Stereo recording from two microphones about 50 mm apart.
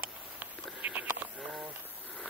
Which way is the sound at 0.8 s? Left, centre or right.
Right.